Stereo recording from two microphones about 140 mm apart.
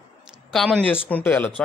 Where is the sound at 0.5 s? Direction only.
5° left (ahead or behind).